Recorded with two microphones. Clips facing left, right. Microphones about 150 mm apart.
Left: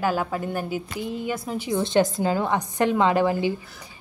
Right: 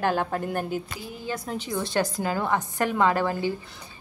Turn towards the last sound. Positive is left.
turn(degrees=15)  # may be behind; listen again after turning